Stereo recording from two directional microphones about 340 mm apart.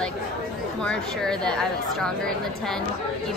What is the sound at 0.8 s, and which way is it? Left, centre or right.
A woman's voice, centre.